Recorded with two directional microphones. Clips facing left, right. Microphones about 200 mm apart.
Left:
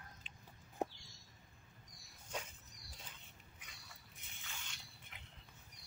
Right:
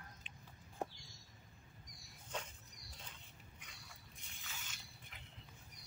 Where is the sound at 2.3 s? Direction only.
10° left (ahead or behind).